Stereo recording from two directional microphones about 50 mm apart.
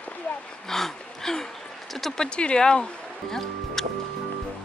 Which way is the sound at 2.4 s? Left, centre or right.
Centre.